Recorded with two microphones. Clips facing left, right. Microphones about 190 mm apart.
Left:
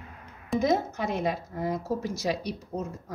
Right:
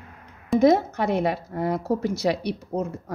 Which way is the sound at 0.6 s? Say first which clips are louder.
Right 8 dB; 65° right (ahead or behind).